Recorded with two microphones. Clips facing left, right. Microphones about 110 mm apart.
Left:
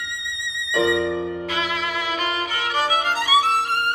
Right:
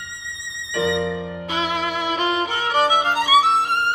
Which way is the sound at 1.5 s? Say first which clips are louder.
Right 2 dB; 25° right (ahead or behind).